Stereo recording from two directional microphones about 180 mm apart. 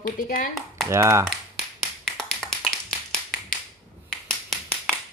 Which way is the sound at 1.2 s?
Centre (ahead or behind).